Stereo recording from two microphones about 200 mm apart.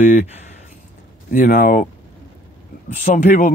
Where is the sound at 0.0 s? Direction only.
35° left (ahead or behind).